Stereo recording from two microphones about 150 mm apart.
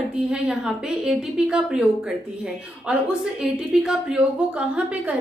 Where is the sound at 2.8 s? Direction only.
5° right (ahead or behind).